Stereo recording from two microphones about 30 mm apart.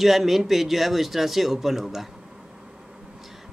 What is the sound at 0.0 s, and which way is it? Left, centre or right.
A woman's voice, centre.